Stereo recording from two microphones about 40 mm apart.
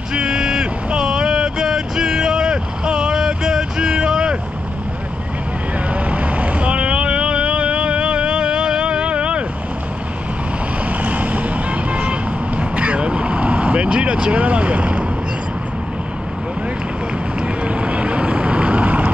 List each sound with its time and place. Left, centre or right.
0.1 s vehicle: right
6.0 s vehicle: right
10.9 s vehicle: right
14.3 s speech: right
17.4 s vehicle: right